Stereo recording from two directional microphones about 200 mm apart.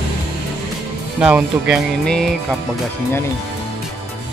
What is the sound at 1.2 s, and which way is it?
Speech, 5° right (ahead or behind).